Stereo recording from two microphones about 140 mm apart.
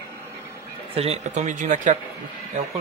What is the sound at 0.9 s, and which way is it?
Speech, 50° right (ahead or behind).